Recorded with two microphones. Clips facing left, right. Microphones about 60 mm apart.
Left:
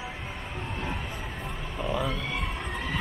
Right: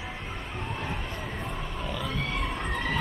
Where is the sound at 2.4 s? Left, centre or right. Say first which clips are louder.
Right 2 dB; centre.